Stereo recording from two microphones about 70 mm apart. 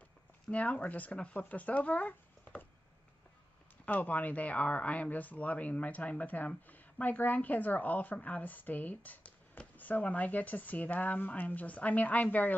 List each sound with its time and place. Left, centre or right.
0.5 s speech: centre
3.8 s speech: left